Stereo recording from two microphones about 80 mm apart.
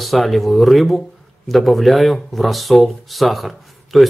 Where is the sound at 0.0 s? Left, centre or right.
Centre.